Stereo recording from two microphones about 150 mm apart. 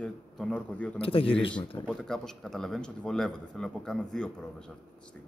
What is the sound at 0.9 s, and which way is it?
Speech, 40° left (ahead or behind).